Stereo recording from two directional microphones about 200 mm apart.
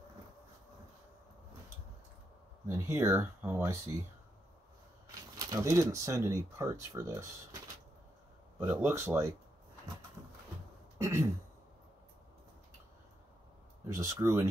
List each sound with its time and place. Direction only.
2.6 s speech: 15° right (ahead or behind)
5.1 s speech: 15° right (ahead or behind)
8.5 s speech: 10° right (ahead or behind)
11.0 s throat clearing: 15° right (ahead or behind)
13.8 s speech: 15° right (ahead or behind)